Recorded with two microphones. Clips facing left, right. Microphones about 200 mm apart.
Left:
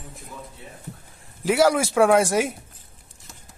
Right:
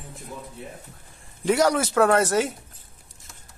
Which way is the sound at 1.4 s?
10° left (ahead or behind).